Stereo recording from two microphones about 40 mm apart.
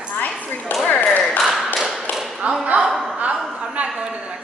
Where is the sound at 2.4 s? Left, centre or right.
Right.